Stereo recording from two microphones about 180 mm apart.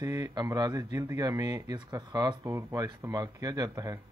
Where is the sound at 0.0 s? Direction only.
20° right (ahead or behind).